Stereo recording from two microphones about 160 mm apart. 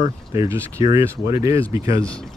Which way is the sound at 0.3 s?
20° right (ahead or behind).